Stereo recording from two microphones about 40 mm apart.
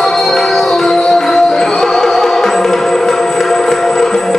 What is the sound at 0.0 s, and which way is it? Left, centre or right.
Music, centre.